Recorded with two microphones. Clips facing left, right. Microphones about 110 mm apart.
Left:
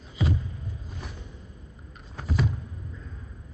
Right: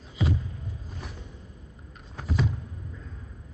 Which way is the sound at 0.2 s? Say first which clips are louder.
Even; centre (ahead or behind).